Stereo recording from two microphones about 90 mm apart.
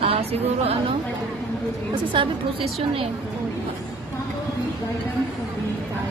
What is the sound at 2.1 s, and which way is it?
Speech, 90° right.